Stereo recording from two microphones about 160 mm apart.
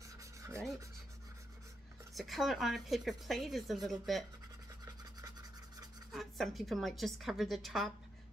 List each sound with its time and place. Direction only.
2.1 s speech: centre (ahead or behind)
4.8 s scratch: 25° right (ahead or behind)
6.1 s speech: centre (ahead or behind)